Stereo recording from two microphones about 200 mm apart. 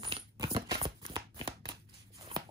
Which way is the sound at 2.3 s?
30° right (ahead or behind).